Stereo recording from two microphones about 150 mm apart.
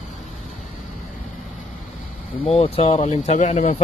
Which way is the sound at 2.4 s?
40° left (ahead or behind).